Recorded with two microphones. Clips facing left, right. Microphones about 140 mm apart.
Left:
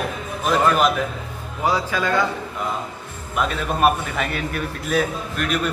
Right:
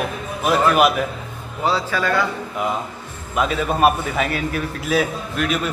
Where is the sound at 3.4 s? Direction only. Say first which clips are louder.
Right 2 dB; 5° right (ahead or behind).